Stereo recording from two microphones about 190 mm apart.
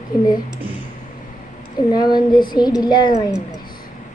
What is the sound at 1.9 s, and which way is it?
Child singing, 20° left (ahead or behind).